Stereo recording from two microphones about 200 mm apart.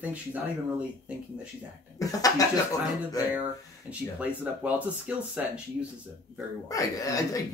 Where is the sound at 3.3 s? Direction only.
5° right (ahead or behind).